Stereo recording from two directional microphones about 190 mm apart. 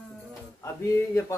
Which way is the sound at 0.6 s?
15° left (ahead or behind).